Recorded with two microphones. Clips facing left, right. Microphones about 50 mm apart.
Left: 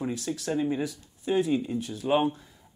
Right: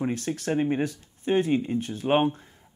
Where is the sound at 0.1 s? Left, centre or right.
Right.